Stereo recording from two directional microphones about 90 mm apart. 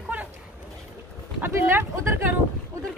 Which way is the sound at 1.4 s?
25° right (ahead or behind).